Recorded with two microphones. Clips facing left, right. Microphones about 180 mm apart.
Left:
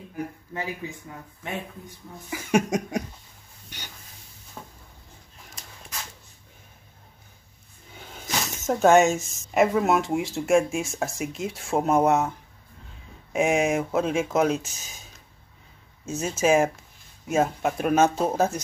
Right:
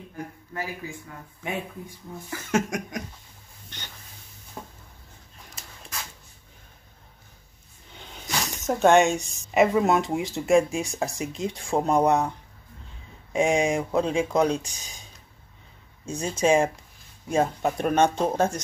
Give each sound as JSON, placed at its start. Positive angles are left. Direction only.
{"t": 0.5, "sound": "speech", "side_deg": 20}
{"t": 2.2, "sound": "cough", "side_deg": 15}
{"t": 3.7, "sound": "a sound", "side_deg": 10}
{"t": 4.6, "sound": "a sound", "side_deg": -20}
{"t": 8.0, "sound": "speech", "side_deg": 5}
{"t": 16.1, "sound": "speech", "side_deg": 5}